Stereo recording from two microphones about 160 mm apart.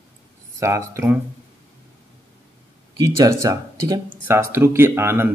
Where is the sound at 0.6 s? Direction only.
20° right (ahead or behind).